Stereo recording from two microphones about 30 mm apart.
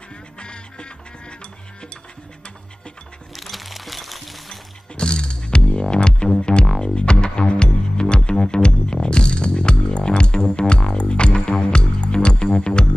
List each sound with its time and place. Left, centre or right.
0.4 s music: left
3.3 s music: centre
4.9 s music: left
11.3 s music: centre
11.6 s music: left